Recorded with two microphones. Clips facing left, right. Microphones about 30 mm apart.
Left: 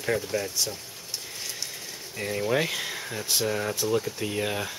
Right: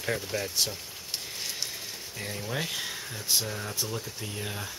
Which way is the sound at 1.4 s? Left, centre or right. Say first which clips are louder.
Right 1 dB; centre.